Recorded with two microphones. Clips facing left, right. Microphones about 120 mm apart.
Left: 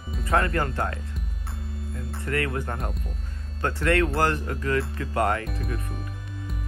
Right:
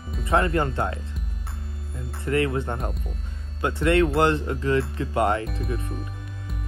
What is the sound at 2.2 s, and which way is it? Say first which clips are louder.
Speech: right 5 dB; 25° right (ahead or behind).